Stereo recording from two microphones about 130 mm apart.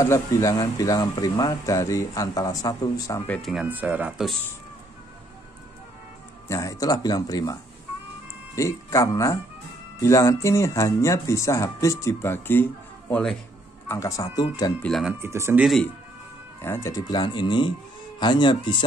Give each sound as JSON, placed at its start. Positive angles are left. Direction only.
{"t": 0.3, "sound": "speech", "side_deg": 25}
{"t": 3.6, "sound": "speech", "side_deg": -10}
{"t": 6.5, "sound": "speech", "side_deg": 25}
{"t": 8.5, "sound": "speech", "side_deg": 20}
{"t": 13.1, "sound": "speech", "side_deg": 5}
{"t": 13.8, "sound": "speech", "side_deg": 25}
{"t": 14.8, "sound": "speech", "side_deg": 5}
{"t": 15.1, "sound": "speech", "side_deg": -20}
{"t": 15.6, "sound": "speech", "side_deg": 0}
{"t": 16.6, "sound": "speech", "side_deg": 20}
{"t": 17.1, "sound": "speech", "side_deg": 35}